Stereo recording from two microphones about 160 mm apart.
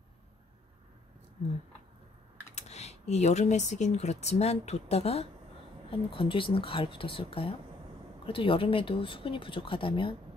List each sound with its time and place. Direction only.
2.5 s speech: 45° left (ahead or behind)